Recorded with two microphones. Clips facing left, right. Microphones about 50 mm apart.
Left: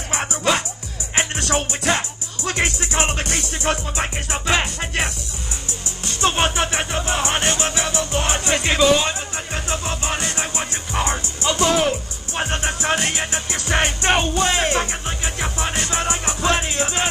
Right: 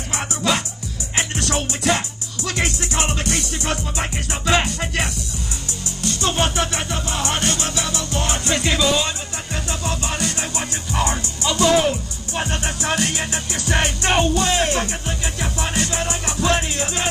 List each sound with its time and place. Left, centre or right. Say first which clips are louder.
0.1 s speech: left 1 dB; left
1.1 s music: left 2 dB; left